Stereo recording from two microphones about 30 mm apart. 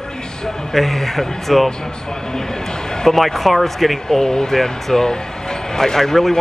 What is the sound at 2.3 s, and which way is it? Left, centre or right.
Speech, left.